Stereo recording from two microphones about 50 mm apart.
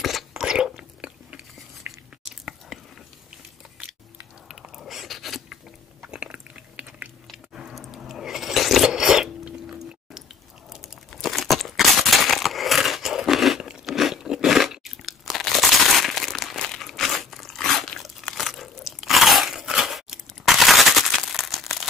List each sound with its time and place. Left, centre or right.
0.4 s biting: centre
1.8 s biting: right
4.5 s a sound: centre
4.8 s a sound: centre
6.0 s chewing: right
7.7 s a sound: centre
8.8 s filing: centre
10.7 s crumpling: centre
13.6 s crunch: centre
16.6 s crumpling: centre
17.6 s crunch: centre